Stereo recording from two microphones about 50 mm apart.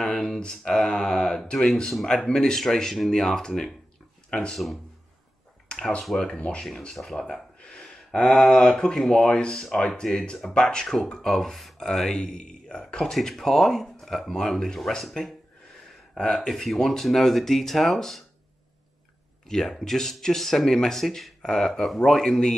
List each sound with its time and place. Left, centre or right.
0.0 s speech: centre
5.7 s speech: centre
7.0 s speech: centre
7.5 s a sound: centre
8.1 s speech: centre
13.0 s speech: centre
16.2 s speech: centre
19.4 s speech: centre